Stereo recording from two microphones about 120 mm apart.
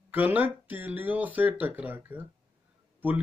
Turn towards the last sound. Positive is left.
turn(degrees=-15)  # may be behind; listen again after turning